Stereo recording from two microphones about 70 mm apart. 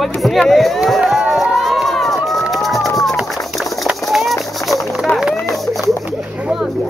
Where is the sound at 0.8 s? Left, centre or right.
Centre.